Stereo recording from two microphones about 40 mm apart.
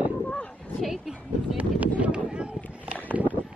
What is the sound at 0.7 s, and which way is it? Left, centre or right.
Speech, centre.